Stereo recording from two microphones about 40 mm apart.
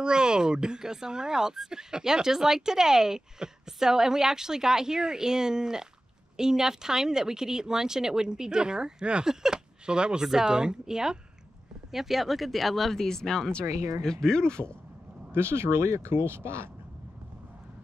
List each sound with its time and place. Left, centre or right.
0.0 s speech: right; by 14.8 s left
15.3 s speech: right